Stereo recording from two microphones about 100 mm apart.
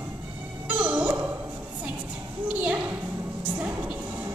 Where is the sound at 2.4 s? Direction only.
10° right (ahead or behind).